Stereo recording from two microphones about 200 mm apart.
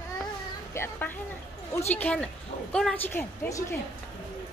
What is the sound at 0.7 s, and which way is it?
A woman's voice, 10° left (ahead or behind).